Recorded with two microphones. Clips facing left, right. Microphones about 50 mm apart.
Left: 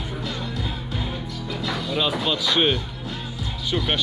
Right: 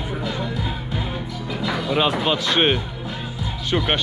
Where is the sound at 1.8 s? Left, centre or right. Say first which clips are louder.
Right 4 dB; right.